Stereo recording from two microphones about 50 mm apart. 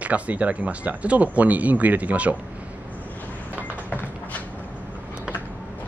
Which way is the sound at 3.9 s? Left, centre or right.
Left.